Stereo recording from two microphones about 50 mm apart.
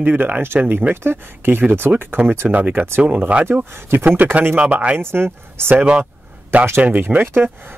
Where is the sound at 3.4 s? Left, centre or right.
Right.